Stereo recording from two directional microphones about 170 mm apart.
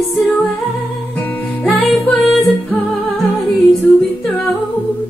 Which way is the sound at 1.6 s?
Centre (ahead or behind).